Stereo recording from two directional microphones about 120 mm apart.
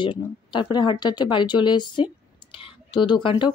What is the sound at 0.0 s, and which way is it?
Speech, 40° left (ahead or behind).